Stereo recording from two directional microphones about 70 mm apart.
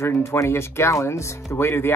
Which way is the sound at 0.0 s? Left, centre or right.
Left.